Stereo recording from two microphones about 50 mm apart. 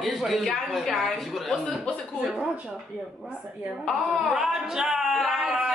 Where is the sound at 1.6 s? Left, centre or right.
Left.